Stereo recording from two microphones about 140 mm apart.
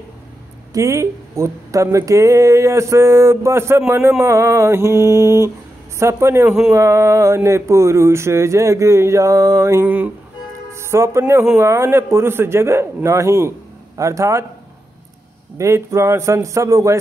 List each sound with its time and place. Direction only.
0.7 s speech: 20° right (ahead or behind)
15.5 s speech: 20° right (ahead or behind)